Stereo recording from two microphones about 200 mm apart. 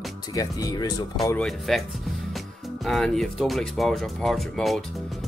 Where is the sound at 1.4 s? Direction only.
Centre (ahead or behind).